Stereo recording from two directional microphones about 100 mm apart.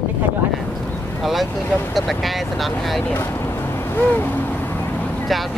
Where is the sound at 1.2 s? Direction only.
Centre (ahead or behind).